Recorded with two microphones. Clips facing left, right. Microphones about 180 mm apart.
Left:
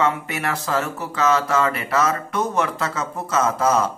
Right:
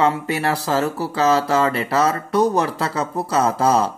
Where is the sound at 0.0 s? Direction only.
30° right (ahead or behind).